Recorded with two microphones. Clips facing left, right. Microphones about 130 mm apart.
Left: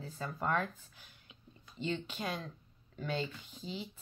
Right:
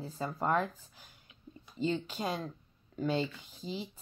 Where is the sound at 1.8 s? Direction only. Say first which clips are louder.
Right 5 dB; 35° right (ahead or behind).